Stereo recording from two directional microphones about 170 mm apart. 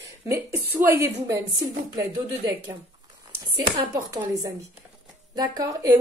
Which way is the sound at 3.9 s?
20° right (ahead or behind).